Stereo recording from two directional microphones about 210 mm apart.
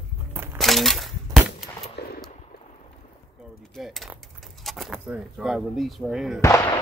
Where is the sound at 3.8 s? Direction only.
Centre (ahead or behind).